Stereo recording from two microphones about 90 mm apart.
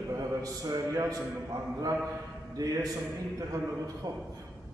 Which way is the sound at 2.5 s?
40° right (ahead or behind).